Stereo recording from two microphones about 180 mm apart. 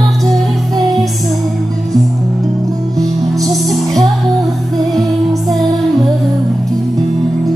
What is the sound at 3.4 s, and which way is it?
Music, centre (ahead or behind).